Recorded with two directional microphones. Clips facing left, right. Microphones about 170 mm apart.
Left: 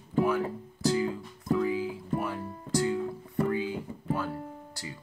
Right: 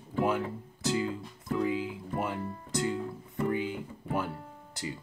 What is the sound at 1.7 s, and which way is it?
Music, 20° right (ahead or behind).